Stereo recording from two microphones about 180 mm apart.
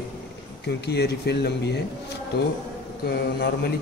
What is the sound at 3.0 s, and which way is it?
Speech, 65° left (ahead or behind).